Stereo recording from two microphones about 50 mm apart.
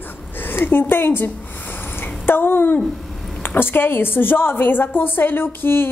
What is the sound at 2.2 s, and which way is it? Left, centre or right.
Speech, left.